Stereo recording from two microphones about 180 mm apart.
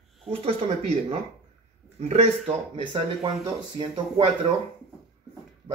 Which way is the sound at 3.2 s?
25° right (ahead or behind).